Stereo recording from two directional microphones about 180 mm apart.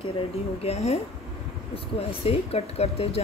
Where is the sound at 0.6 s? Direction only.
35° left (ahead or behind).